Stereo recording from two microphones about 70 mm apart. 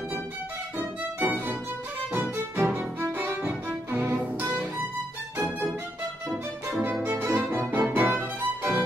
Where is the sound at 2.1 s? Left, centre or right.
Right.